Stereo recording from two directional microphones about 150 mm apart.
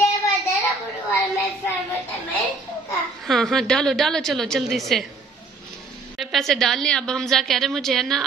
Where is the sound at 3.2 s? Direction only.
Centre (ahead or behind).